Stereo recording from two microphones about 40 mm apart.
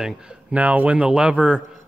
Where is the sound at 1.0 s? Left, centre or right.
Right.